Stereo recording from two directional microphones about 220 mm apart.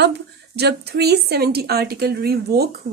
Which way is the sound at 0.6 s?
45° right (ahead or behind).